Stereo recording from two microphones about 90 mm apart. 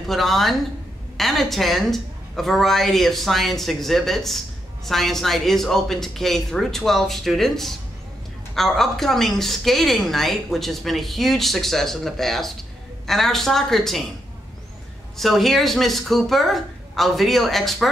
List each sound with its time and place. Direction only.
0.1 s a woman's voice: centre (ahead or behind)
15.1 s a woman's voice: centre (ahead or behind)